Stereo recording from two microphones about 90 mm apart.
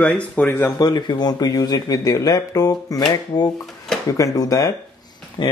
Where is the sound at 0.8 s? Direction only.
50° left (ahead or behind).